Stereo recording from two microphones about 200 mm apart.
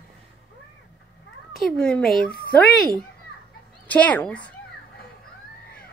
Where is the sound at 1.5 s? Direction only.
Centre (ahead or behind).